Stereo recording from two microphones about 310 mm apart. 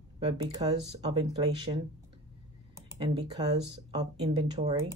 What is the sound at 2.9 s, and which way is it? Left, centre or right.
Speech, centre.